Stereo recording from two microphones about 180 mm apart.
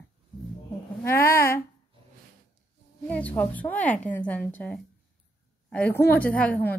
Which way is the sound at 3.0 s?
10° left (ahead or behind).